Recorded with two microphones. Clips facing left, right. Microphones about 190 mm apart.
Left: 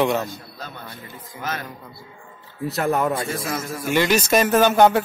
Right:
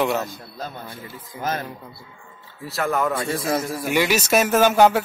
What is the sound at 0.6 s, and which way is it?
Speech, 50° right (ahead or behind).